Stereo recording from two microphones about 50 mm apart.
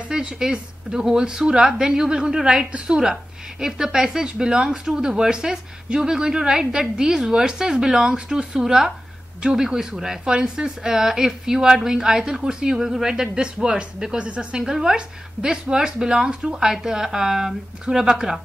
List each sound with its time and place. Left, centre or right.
0.1 s speech: centre
14.6 s speech: centre